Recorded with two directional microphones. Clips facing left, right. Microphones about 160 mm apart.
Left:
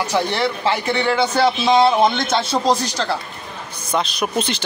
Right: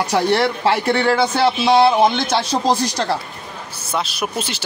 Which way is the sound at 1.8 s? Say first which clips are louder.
Right 1 dB; 10° right (ahead or behind).